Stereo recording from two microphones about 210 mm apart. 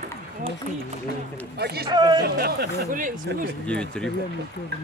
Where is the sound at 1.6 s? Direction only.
50° right (ahead or behind).